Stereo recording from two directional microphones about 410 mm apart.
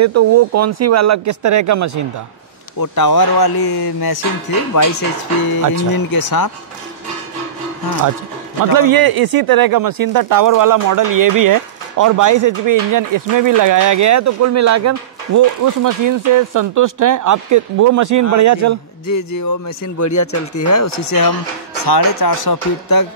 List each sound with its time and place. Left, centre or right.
0.0 s speech: right
2.8 s speech: left
4.7 s speech: left
6.1 s speech: left
8.7 s speech: right
19.0 s speech: left
21.8 s speech: left